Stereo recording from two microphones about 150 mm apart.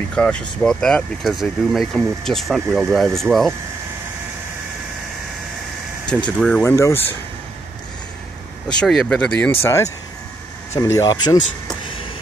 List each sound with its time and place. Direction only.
0.1 s speech: 5° left (ahead or behind)
6.0 s speech: 10° left (ahead or behind)
6.6 s speech: 20° left (ahead or behind)
8.6 s speech: 5° left (ahead or behind); by 11.4 s 30° left (ahead or behind)